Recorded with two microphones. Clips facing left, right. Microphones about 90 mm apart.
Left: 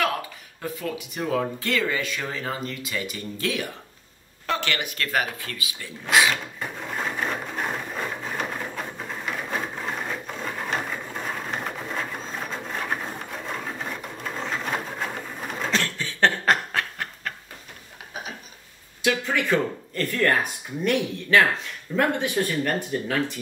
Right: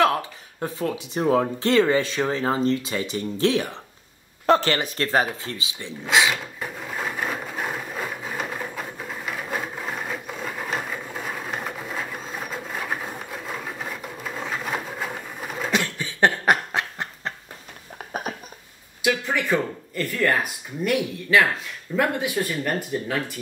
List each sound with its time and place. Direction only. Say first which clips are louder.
0.6 s speech: right 4 dB; 30° right (ahead or behind)
6.3 s sewing machine: even; centre (ahead or behind)
15.7 s a sound: right 2 dB; 15° right (ahead or behind)
19.3 s speech: even; 5° right (ahead or behind)